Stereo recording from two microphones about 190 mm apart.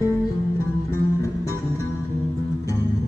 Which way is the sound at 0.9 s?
15° left (ahead or behind).